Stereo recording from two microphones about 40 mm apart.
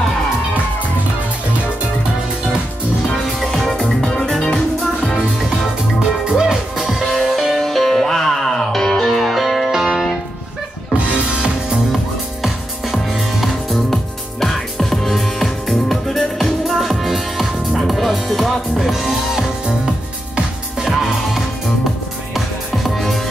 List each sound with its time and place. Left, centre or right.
3.3 s music: centre
4.0 s music: centre
6.3 s music: centre
10.9 s music: right
12.9 s music: centre
22.8 s music: centre